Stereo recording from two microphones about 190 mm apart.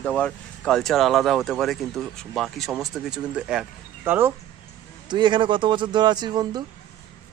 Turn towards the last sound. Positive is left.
turn(degrees=-20)  # may be behind; listen again after turning